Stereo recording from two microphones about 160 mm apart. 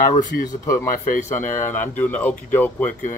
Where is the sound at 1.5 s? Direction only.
15° left (ahead or behind).